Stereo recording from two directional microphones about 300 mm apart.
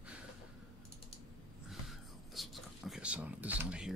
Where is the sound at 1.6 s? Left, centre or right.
Centre.